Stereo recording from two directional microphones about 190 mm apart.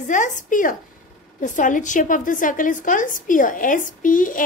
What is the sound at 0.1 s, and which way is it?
A woman's voice, 40° left (ahead or behind).